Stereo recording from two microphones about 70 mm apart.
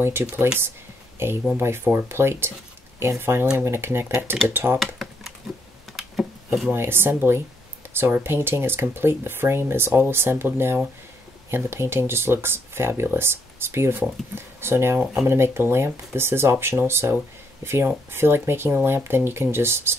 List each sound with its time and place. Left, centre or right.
0.0 s speech: right
4.7 s computer keyboard: centre
5.9 s a sound: centre
6.7 s speech: right